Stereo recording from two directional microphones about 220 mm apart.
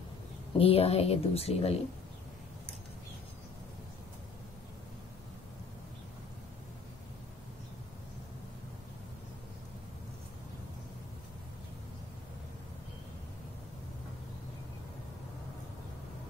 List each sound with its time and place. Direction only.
0.6 s speech: 25° left (ahead or behind)